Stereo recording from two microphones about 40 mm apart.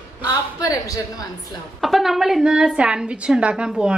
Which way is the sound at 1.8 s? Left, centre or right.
Centre.